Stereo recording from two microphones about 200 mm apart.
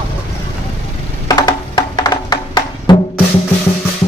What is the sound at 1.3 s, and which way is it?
Music, 20° left (ahead or behind).